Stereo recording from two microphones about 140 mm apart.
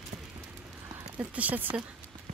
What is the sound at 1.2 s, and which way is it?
Speech, 10° right (ahead or behind).